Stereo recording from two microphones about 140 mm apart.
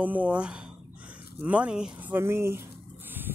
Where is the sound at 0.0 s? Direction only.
10° right (ahead or behind).